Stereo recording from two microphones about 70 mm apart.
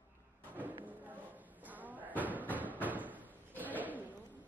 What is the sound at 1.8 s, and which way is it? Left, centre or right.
Slam, right.